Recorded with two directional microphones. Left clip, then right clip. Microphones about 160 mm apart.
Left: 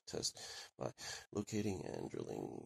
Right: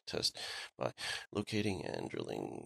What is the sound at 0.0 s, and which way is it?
Speech, 10° right (ahead or behind).